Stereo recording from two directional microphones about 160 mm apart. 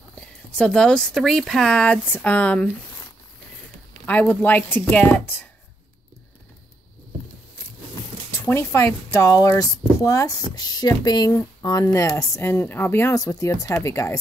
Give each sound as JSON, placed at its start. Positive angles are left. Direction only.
{"t": 0.1, "sound": "speech", "side_deg": 5}
{"t": 4.0, "sound": "a woman's voice", "side_deg": 10}
{"t": 8.4, "sound": "speech", "side_deg": 15}